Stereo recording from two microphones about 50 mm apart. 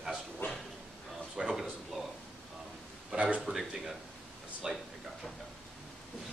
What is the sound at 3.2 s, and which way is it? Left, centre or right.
Speech, right.